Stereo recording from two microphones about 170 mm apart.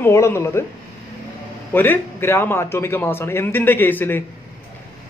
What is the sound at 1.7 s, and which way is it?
A man's voice, 10° left (ahead or behind).